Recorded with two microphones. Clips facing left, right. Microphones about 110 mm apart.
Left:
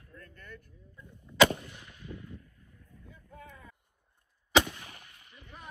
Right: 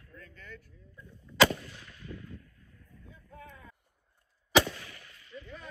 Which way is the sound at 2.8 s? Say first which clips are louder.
Even; 15° left (ahead or behind).